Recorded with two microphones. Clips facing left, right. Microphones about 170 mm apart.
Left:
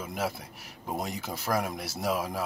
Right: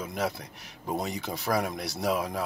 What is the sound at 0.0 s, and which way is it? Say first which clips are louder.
Speech: right 2 dB; 5° left (ahead or behind).